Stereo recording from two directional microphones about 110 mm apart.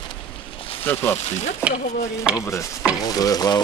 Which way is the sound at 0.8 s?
20° left (ahead or behind).